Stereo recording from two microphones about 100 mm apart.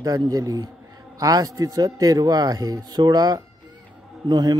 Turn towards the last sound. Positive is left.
turn(degrees=-45)  # may be behind; listen again after turning